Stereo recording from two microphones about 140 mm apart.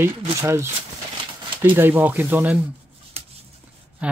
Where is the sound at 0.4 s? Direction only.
20° right (ahead or behind).